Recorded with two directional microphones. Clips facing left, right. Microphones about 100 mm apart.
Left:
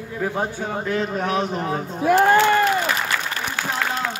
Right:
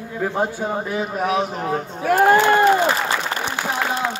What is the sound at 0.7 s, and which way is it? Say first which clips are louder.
A man's voice: even; 10° right (ahead or behind).